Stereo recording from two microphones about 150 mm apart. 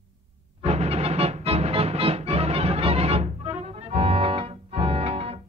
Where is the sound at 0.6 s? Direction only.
45° right (ahead or behind).